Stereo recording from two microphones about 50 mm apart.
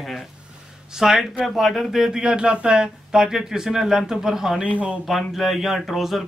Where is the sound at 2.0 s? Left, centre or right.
Centre.